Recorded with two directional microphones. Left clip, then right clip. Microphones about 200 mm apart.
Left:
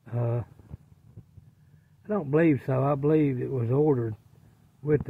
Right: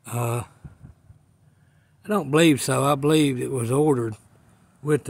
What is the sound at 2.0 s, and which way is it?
A man's voice, 30° right (ahead or behind).